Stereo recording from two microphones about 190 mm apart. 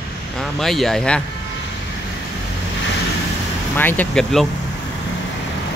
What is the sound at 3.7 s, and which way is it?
Speech, 10° left (ahead or behind).